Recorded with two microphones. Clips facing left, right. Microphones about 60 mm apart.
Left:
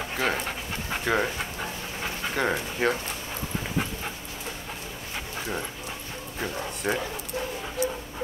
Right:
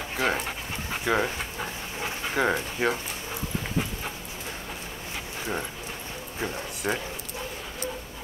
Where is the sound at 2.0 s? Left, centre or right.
Centre.